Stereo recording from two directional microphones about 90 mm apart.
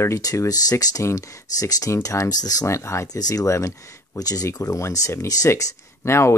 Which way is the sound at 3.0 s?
45° left (ahead or behind).